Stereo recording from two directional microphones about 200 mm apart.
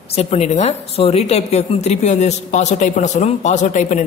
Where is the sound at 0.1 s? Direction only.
30° left (ahead or behind).